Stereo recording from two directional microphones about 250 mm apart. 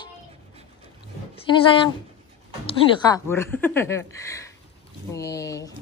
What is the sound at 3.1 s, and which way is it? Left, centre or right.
A woman's voice, centre.